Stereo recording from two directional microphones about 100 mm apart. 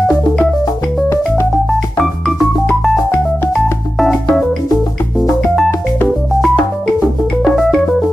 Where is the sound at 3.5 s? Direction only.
Centre (ahead or behind).